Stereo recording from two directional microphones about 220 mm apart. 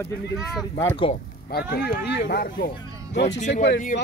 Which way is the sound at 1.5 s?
45° left (ahead or behind).